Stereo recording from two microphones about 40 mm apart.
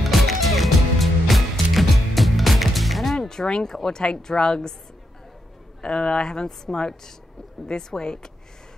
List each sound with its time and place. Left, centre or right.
0.0 s music: centre
3.2 s a woman's voice: centre
5.8 s a woman's voice: left